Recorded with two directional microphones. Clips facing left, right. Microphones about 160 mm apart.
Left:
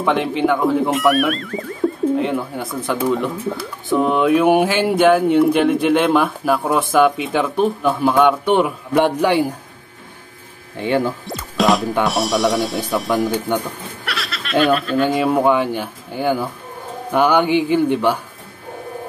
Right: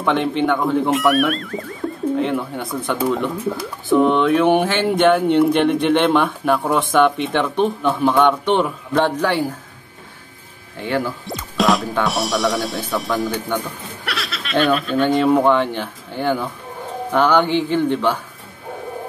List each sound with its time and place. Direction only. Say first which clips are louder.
0.0 s speech: left 1 dB; centre (ahead or behind)
10.8 s speech: left 3 dB; 20° left (ahead or behind)
11.2 s music: left 1 dB; centre (ahead or behind)
12.0 s speech: left 2 dB; centre (ahead or behind)
13.5 s a man's voice: left 3 dB; 15° left (ahead or behind)
14.0 s a man's voice: right 1 dB; centre (ahead or behind)